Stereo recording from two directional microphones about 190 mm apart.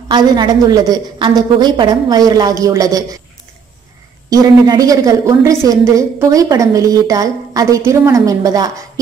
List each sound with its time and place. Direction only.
0.1 s a woman's voice: 20° right (ahead or behind)
4.3 s a woman's voice: 20° right (ahead or behind)